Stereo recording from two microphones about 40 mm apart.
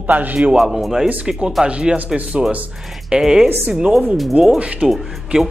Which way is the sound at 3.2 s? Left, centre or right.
Centre.